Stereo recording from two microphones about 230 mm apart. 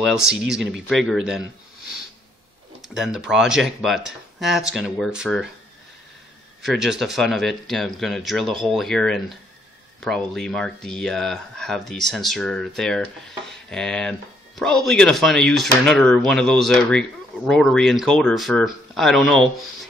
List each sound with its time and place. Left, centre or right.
0.0 s speech: centre
2.8 s speech: centre
6.6 s speech: centre